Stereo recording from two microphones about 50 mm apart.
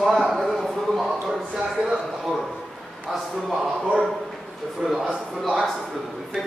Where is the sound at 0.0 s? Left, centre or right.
Centre.